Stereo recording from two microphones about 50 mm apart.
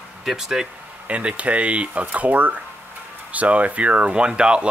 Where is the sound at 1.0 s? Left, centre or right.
Right.